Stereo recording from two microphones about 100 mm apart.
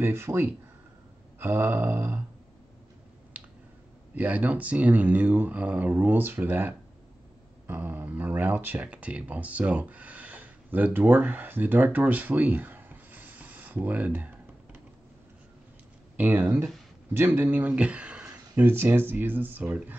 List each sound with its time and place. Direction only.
0.0 s speech: 25° right (ahead or behind)
4.1 s speech: 15° right (ahead or behind)
16.2 s speech: 15° right (ahead or behind)
18.5 s speech: 25° right (ahead or behind)